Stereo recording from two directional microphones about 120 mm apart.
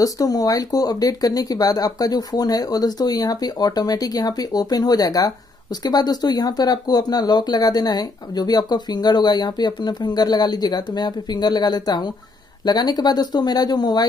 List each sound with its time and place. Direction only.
0.0 s speech: 30° left (ahead or behind)